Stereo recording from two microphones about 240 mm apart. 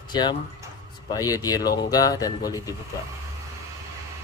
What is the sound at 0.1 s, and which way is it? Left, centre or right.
A man's voice, centre.